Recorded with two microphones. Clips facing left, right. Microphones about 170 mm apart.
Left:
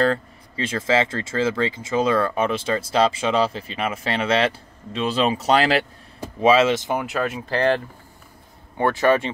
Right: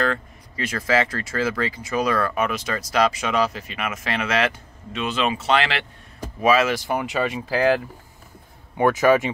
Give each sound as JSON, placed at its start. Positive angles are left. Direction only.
{"t": 0.0, "sound": "speech", "side_deg": 30}
{"t": 6.4, "sound": "speech", "side_deg": 25}
{"t": 7.0, "sound": "speech", "side_deg": 0}